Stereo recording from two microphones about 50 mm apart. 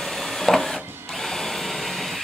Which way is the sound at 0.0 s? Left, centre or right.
Centre.